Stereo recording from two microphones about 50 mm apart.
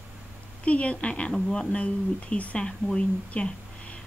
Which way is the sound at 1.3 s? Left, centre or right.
Centre.